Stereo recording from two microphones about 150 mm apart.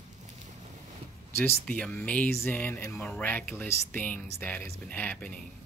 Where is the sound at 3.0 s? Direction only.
5° left (ahead or behind).